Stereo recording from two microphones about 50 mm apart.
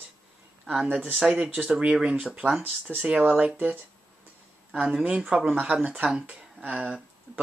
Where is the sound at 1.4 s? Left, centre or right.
Centre.